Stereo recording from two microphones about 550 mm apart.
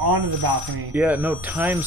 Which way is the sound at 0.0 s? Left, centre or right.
Right.